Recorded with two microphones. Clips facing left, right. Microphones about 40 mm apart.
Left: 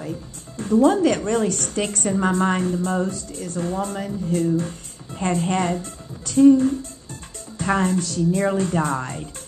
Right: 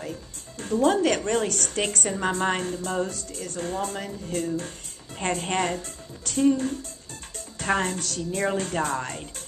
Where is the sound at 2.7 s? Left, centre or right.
Left.